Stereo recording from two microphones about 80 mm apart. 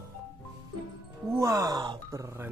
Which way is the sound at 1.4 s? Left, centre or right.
Right.